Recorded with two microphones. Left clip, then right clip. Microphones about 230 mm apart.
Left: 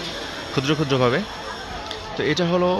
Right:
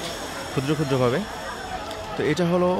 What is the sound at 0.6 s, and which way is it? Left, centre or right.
Speech, centre.